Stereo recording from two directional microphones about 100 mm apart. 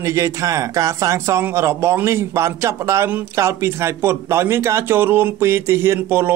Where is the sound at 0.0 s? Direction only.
30° right (ahead or behind).